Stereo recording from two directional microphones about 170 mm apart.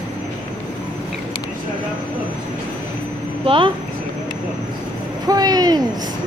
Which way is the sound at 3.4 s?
30° right (ahead or behind).